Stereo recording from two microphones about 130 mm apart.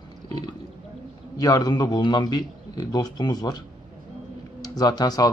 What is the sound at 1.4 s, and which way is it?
Speech, 30° left (ahead or behind).